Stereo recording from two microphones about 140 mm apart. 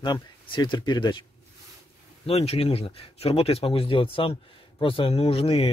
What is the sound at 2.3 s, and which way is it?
Speech, 45° left (ahead or behind).